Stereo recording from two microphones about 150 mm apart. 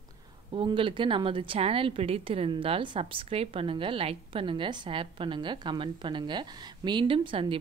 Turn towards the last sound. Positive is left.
turn(degrees=-35)  # may be behind; listen again after turning